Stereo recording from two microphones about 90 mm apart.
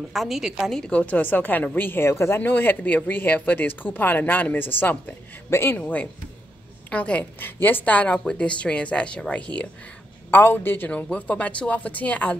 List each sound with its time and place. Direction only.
0.1 s a woman's voice: centre (ahead or behind)
0.7 s speech: 10° left (ahead or behind)